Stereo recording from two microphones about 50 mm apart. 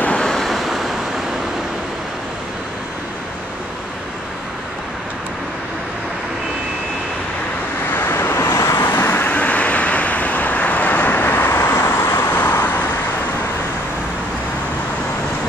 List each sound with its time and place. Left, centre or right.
0.1 s waves: centre
0.5 s waves: centre
7.9 s vehicle: left
8.3 s vehicle: left
8.7 s vehicle: left
11.8 s vehicle: left
12.2 s vehicle: left